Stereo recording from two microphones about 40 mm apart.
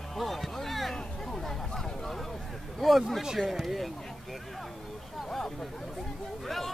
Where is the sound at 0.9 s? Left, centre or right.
Centre.